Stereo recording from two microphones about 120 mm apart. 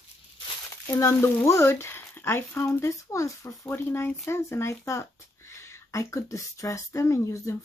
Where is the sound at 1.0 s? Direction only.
25° left (ahead or behind).